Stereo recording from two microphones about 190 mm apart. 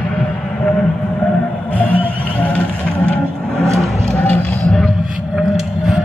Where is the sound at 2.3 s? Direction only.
5° left (ahead or behind).